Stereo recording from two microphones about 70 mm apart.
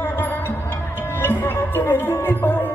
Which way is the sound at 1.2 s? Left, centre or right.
Left.